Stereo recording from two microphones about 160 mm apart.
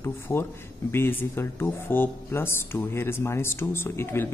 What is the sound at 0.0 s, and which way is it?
Speech, 15° left (ahead or behind).